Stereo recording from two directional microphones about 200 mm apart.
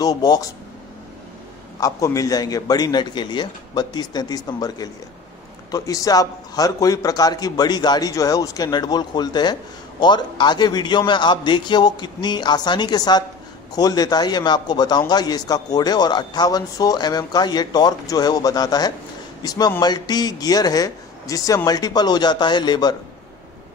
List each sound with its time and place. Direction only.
0.0 s speech: 20° left (ahead or behind)
1.8 s a man's voice: 15° left (ahead or behind)